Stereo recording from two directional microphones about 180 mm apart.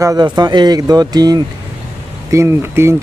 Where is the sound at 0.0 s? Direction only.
20° right (ahead or behind).